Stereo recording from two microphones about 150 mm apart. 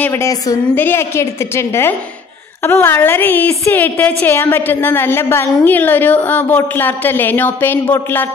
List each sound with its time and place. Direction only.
0.0 s a woman's voice: 20° left (ahead or behind)